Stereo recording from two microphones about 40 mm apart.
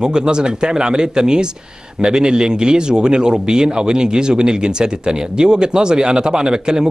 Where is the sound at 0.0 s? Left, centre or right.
Centre.